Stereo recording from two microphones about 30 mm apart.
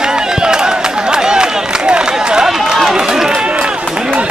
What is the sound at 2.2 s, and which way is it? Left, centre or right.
Speech, right.